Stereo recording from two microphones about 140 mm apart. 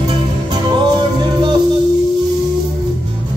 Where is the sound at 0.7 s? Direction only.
35° right (ahead or behind).